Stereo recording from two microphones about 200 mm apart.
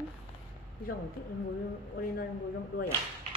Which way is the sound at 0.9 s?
50° left (ahead or behind).